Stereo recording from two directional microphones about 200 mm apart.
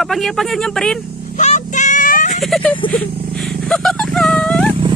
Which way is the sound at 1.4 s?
35° left (ahead or behind).